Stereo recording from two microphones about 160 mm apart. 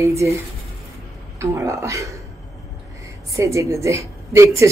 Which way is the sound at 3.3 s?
20° right (ahead or behind).